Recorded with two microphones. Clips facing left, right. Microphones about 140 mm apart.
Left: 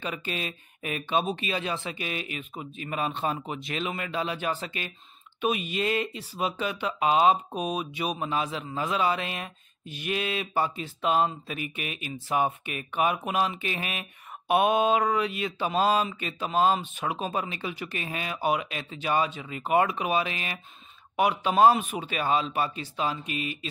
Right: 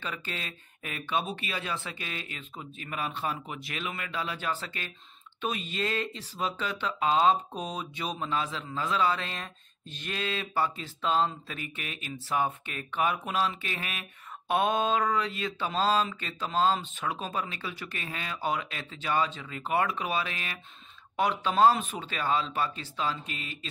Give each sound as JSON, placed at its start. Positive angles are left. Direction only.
{"t": 0.0, "sound": "speech", "side_deg": 15}